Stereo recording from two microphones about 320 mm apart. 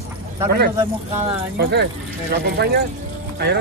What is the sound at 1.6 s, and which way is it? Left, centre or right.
Speech, right.